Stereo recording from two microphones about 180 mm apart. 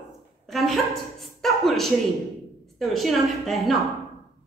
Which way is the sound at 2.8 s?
Centre (ahead or behind).